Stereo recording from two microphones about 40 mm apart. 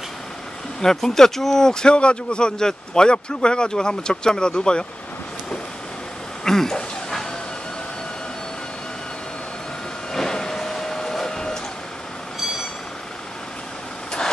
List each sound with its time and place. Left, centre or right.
0.7 s speech: centre
6.4 s a sound: centre
10.1 s printer: centre